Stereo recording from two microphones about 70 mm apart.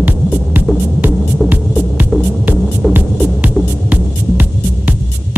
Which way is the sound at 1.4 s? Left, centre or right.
Centre.